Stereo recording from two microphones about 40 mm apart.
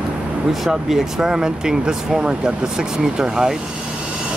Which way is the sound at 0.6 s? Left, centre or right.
Centre.